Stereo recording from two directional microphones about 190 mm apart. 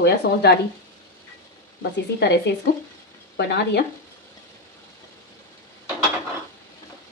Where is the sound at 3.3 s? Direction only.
65° left (ahead or behind).